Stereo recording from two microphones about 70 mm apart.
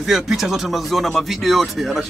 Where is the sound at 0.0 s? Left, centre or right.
Centre.